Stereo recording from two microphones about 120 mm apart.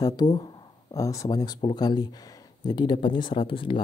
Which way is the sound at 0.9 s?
25° left (ahead or behind).